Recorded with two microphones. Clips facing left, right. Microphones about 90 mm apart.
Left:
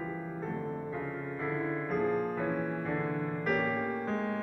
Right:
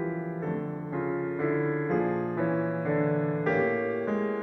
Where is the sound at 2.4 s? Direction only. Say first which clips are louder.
Right 5 dB; 15° right (ahead or behind).